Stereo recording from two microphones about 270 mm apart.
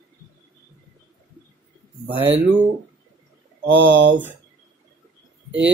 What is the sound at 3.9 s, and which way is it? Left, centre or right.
Speech, right.